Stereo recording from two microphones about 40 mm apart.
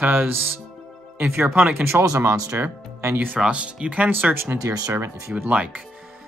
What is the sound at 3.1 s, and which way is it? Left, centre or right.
Speech, right.